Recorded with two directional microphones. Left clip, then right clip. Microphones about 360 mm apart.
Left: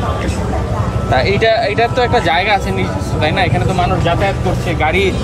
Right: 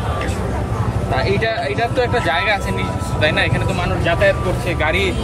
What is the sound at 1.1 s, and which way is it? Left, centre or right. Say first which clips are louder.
Speech: left 7 dB; left.